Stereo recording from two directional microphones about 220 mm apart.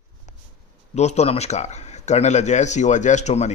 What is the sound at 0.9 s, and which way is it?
Speech, 30° left (ahead or behind).